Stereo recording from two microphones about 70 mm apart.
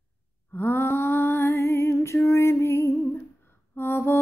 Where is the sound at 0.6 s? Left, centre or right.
Left.